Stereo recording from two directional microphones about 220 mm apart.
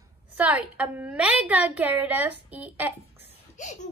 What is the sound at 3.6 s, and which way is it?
Speech, 35° left (ahead or behind).